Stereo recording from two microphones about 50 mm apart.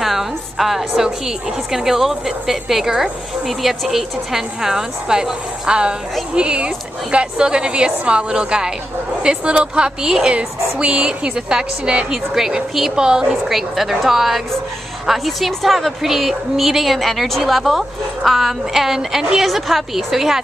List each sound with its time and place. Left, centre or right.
0.0 s a woman's voice: centre
12.9 s a woman's voice: centre
13.5 s a woman's voice: centre